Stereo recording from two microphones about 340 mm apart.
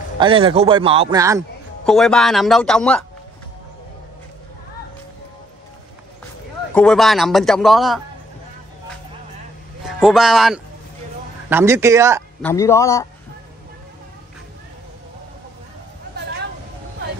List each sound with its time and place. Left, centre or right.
0.2 s a man's voice: centre
1.9 s a man's voice: centre
6.7 s a man's voice: centre
9.8 s a man's voice: centre
12.4 s a man's voice: centre